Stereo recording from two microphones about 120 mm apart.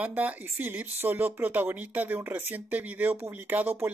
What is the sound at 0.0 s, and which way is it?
Speech, 15° right (ahead or behind).